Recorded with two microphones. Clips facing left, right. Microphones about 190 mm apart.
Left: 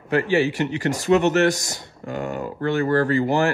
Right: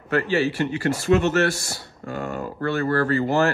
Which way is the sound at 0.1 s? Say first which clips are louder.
Left 2 dB; 15° left (ahead or behind).